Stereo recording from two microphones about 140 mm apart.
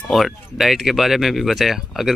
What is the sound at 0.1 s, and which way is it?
Speech, centre (ahead or behind).